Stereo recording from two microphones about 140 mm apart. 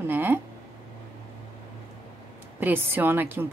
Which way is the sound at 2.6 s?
15° right (ahead or behind).